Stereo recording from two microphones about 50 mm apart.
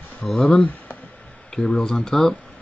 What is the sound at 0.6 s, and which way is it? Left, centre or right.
Speech, left.